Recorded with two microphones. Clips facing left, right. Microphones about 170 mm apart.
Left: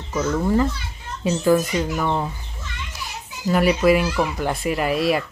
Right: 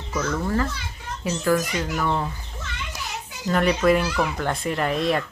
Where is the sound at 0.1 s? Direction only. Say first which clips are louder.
Left 4 dB; 15° left (ahead or behind).